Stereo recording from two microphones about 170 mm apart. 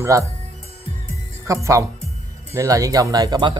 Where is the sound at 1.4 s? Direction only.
20° right (ahead or behind).